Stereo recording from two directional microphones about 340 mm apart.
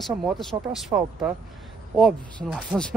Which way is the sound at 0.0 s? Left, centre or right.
Centre.